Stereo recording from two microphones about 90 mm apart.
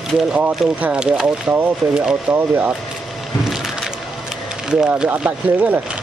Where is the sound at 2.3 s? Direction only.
20° right (ahead or behind).